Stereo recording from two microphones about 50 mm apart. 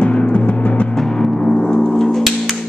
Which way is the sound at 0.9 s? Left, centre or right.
Centre.